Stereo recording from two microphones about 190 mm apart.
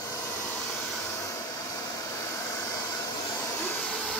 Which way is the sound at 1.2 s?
15° left (ahead or behind).